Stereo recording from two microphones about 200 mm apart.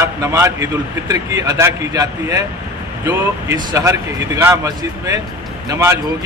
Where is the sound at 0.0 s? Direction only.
15° right (ahead or behind).